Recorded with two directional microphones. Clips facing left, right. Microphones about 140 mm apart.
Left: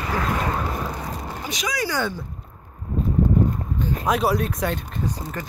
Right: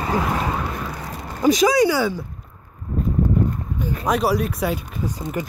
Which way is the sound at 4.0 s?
Centre (ahead or behind).